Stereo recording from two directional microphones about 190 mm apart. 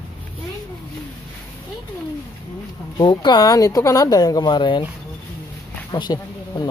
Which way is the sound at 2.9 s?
25° left (ahead or behind).